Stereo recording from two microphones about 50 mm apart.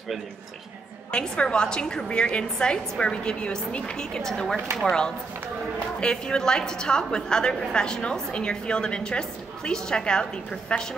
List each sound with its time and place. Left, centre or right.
1.1 s a woman's voice: centre
5.9 s a woman's voice: centre